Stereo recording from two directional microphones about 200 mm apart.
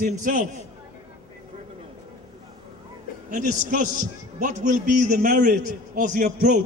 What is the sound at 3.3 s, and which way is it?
A man's voice, 40° right (ahead or behind).